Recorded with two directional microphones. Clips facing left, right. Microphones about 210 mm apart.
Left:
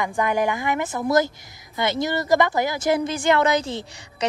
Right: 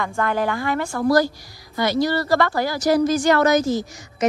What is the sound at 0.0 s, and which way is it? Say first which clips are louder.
A woman's voice: even; 15° left (ahead or behind).